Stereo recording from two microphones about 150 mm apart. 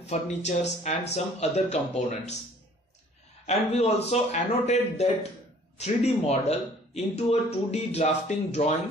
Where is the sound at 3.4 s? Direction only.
45° left (ahead or behind).